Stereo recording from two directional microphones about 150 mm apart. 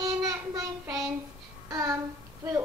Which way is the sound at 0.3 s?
25° right (ahead or behind).